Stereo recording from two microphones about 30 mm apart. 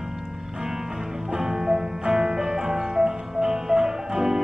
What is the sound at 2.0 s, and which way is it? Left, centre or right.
Music, right.